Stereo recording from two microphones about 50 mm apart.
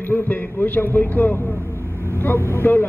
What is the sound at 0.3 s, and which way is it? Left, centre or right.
A man's voice, left.